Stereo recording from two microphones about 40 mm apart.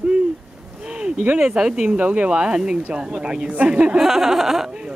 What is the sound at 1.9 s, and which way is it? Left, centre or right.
Speech, right.